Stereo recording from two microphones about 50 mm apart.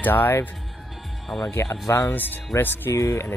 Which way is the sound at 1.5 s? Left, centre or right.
Left.